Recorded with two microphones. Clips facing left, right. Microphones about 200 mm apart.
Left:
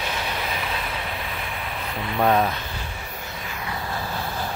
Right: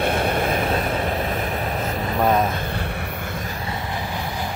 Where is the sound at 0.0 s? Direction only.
55° right (ahead or behind).